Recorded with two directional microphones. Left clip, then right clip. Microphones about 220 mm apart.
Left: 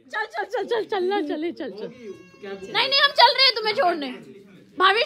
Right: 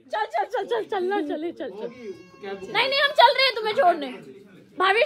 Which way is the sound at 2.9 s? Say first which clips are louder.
Left 1 dB; 30° left (ahead or behind).